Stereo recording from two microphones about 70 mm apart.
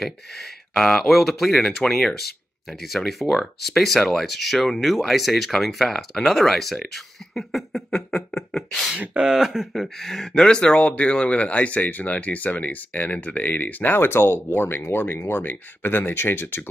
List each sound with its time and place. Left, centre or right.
0.0 s speech: centre
8.9 s speech: centre; by 16.6 s left